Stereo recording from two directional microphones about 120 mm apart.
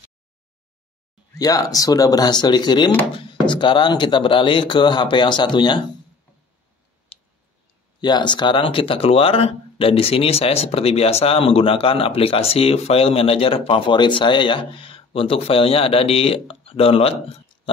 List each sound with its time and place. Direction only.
1.3 s speech: 30° left (ahead or behind)
7.1 s clicking: 50° left (ahead or behind)
8.0 s speech: 40° left (ahead or behind)